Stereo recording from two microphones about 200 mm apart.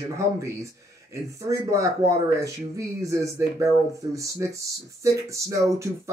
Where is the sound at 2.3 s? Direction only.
15° right (ahead or behind).